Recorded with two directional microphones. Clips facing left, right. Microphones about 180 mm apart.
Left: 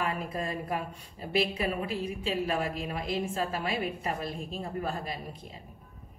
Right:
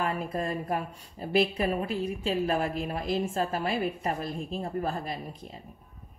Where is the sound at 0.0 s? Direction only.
35° right (ahead or behind).